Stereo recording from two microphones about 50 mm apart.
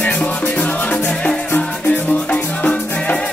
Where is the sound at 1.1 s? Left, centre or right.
Centre.